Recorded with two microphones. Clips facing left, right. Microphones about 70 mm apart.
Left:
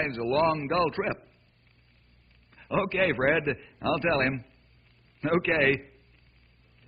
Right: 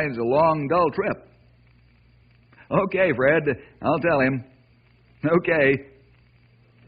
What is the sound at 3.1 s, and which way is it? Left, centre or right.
A man's voice, right.